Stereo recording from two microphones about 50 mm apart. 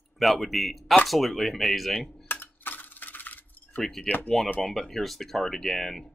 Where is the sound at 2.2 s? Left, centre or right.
Left.